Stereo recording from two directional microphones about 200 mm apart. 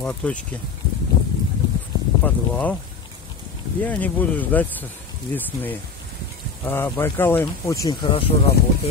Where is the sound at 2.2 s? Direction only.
5° left (ahead or behind).